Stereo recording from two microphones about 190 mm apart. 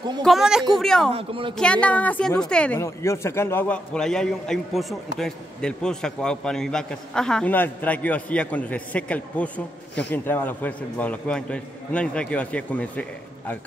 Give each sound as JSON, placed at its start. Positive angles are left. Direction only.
{"t": 0.2, "sound": "a man's voice", "side_deg": 0}
{"t": 1.1, "sound": "speech", "side_deg": -30}
{"t": 1.6, "sound": "a man's voice", "side_deg": 5}